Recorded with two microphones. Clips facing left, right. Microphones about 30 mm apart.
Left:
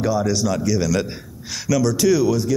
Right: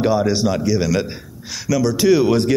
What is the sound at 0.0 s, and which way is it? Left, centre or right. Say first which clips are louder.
A man's voice: right 3 dB; right.